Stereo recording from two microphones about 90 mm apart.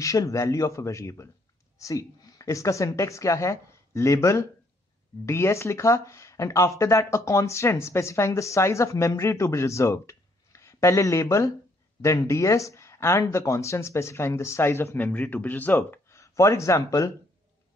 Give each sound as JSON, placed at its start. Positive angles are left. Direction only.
{"t": 0.0, "sound": "speech", "side_deg": 40}